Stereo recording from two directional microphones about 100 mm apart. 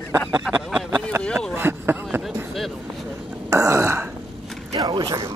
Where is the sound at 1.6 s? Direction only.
25° right (ahead or behind).